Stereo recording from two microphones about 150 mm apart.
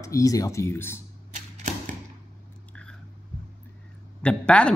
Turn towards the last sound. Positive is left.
turn(degrees=5)  # may be behind; listen again after turning